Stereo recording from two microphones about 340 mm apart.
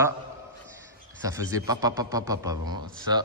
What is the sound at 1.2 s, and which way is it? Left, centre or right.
Speech, centre.